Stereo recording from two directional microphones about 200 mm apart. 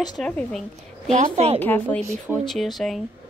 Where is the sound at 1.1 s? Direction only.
35° right (ahead or behind).